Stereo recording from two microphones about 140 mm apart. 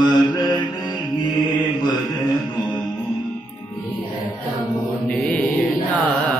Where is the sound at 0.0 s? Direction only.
30° left (ahead or behind).